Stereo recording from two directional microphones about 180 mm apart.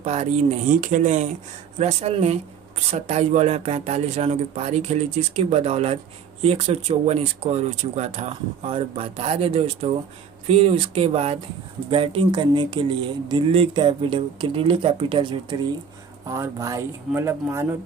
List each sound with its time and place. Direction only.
0.0 s speech: 35° right (ahead or behind); by 17.6 s 15° right (ahead or behind)